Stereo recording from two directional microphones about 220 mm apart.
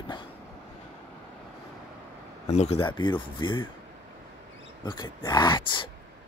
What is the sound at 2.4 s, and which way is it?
Speech, 30° left (ahead or behind).